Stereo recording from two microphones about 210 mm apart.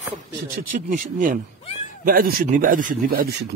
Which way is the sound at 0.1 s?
40° right (ahead or behind).